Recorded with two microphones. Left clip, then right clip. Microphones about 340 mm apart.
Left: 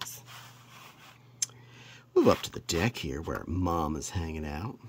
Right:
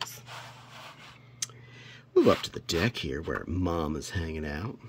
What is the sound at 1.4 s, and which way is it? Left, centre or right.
Speech, centre.